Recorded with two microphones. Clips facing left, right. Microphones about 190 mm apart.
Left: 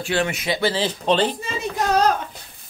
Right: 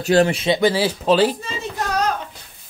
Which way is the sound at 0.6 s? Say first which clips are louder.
Right 4 dB; 10° right (ahead or behind).